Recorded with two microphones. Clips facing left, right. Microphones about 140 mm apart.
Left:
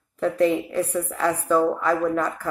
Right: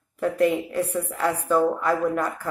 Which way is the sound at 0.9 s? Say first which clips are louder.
Left 1 dB; 15° right (ahead or behind).